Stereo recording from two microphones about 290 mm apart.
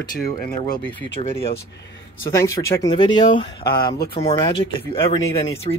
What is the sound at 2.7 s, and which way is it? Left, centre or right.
Speech, centre.